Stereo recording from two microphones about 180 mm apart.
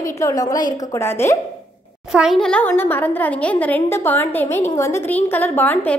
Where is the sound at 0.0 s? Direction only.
20° left (ahead or behind).